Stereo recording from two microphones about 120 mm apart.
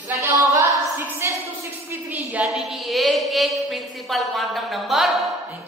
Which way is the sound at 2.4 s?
15° right (ahead or behind).